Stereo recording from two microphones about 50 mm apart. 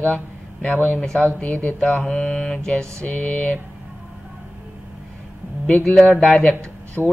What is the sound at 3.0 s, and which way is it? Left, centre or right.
Speech, left.